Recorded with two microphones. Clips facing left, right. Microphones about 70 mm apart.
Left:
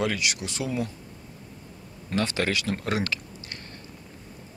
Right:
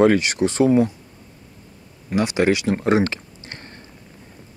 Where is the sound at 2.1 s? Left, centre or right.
Centre.